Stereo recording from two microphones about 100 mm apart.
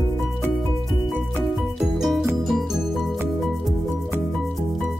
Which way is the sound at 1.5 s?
Centre (ahead or behind).